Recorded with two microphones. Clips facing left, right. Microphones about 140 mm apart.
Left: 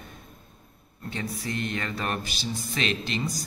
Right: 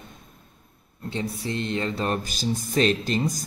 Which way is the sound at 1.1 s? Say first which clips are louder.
Right 3 dB; 25° right (ahead or behind).